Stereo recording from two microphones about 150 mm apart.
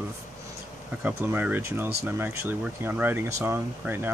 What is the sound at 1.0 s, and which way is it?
Speech, 15° right (ahead or behind).